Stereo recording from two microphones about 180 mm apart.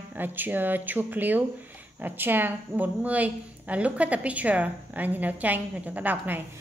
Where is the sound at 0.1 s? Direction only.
10° right (ahead or behind).